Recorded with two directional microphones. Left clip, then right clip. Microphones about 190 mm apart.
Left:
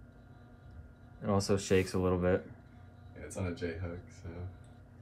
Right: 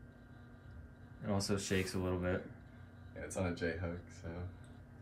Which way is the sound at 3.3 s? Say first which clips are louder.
Even; 30° right (ahead or behind).